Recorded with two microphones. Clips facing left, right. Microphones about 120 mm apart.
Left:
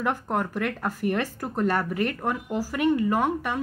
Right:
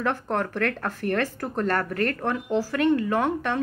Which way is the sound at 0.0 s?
10° left (ahead or behind).